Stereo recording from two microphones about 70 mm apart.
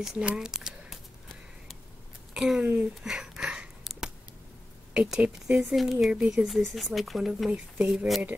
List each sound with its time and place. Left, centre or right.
0.0 s speech: centre
2.3 s speech: centre
2.6 s speech: right
3.0 s a sound: centre
4.9 s speech: centre